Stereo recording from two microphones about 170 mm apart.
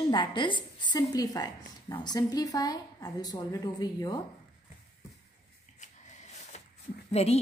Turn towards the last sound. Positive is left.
turn(degrees=40)  # may be behind; listen again after turning